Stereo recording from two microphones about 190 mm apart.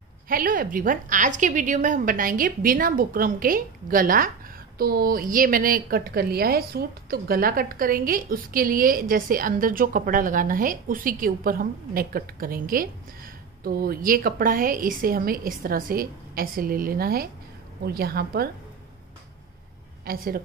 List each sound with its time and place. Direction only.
0.3 s a woman's voice: 50° right (ahead or behind)
20.1 s a woman's voice: 50° right (ahead or behind)